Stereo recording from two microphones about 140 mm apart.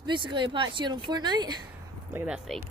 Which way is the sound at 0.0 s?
35° right (ahead or behind).